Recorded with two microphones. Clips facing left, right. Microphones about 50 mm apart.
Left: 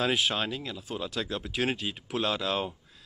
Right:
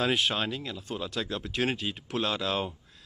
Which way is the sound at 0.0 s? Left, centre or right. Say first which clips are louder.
Even; centre.